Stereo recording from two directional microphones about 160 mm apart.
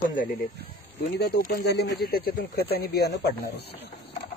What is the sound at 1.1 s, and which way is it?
Speech, 90° left.